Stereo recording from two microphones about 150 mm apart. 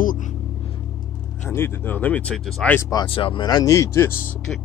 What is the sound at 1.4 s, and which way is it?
Speech, 15° left (ahead or behind).